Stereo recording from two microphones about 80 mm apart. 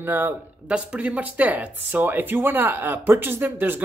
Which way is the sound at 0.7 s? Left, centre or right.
Centre.